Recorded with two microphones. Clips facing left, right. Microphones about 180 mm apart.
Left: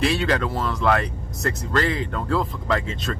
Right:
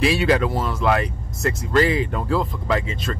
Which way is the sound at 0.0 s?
5° right (ahead or behind).